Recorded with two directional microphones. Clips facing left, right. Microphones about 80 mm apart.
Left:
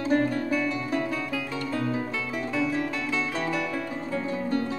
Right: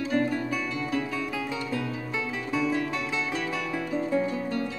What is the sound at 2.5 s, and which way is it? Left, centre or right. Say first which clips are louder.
Music: right 1 dB; centre.